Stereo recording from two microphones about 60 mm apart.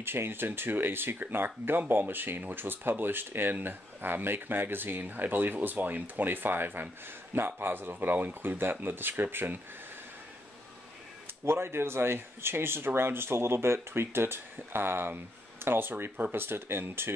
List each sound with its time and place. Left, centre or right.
0.0 s speech: right
11.4 s speech: right